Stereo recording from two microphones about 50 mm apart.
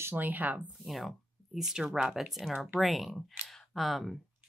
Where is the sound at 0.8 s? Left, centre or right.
Centre.